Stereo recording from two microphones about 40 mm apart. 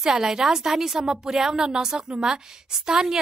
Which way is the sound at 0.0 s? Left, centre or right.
Centre.